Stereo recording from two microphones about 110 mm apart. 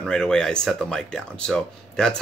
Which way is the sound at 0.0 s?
5° left (ahead or behind).